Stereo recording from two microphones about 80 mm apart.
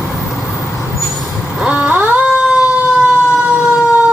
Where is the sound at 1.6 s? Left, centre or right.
Centre.